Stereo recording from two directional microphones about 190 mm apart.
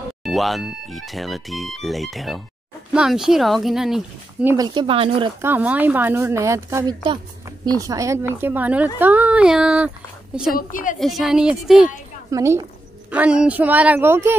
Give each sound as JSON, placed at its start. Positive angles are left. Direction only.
{"t": 0.2, "sound": "speech", "side_deg": 0}
{"t": 4.6, "sound": "speech", "side_deg": -25}
{"t": 5.4, "sound": "a woman's voice", "side_deg": -10}
{"t": 10.5, "sound": "a woman's voice", "side_deg": 45}
{"t": 11.0, "sound": "speech", "side_deg": 0}
{"t": 12.3, "sound": "a woman's voice", "side_deg": -15}